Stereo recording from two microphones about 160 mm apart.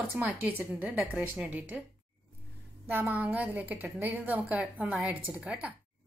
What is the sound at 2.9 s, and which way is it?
A woman's voice, 10° right (ahead or behind).